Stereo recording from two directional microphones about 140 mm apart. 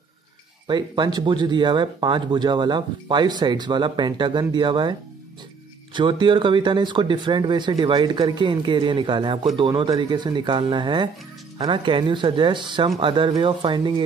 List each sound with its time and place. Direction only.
0.7 s speech: 35° right (ahead or behind)
5.9 s speech: 35° right (ahead or behind)